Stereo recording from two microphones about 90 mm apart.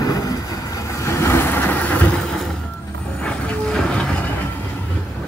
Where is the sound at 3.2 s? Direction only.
5° left (ahead or behind).